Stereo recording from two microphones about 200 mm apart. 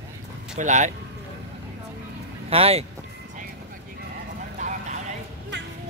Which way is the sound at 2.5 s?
30° right (ahead or behind).